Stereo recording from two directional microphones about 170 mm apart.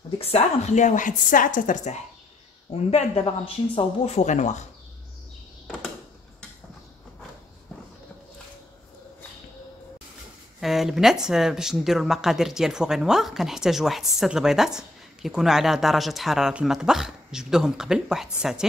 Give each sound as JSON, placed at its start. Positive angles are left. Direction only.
{"t": 0.2, "sound": "speech", "side_deg": 40}
{"t": 2.7, "sound": "speech", "side_deg": 35}
{"t": 10.6, "sound": "speech", "side_deg": 0}